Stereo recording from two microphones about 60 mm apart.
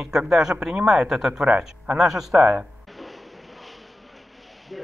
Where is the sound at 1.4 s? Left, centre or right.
Centre.